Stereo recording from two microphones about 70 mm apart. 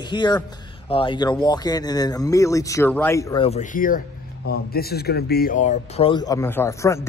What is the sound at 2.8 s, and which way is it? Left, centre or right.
Speech, left.